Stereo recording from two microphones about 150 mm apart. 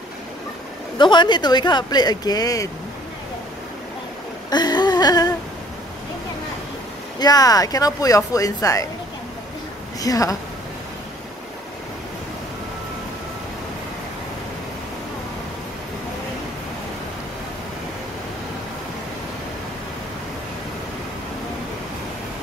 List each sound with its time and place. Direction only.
0.9 s speech: 30° left (ahead or behind)
4.5 s a sound: 30° left (ahead or behind)
7.2 s speech: 25° left (ahead or behind)
9.9 s a woman's voice: 25° left (ahead or behind)